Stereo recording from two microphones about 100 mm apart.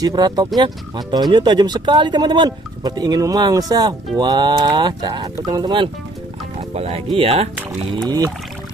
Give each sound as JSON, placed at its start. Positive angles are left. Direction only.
{"t": 0.0, "sound": "speech", "side_deg": -45}
{"t": 6.7, "sound": "speech", "side_deg": -85}